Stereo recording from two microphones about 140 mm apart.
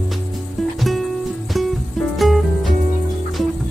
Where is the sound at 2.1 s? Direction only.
Centre (ahead or behind).